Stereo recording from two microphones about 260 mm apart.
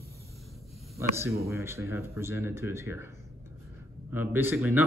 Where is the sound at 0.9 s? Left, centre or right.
Centre.